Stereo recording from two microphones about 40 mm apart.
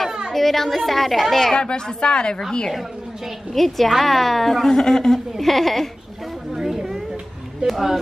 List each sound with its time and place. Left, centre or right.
0.3 s a woman's voice: centre
1.5 s speech: left
3.5 s a woman's voice: centre
6.5 s a sound: centre
7.6 s a woman's voice: centre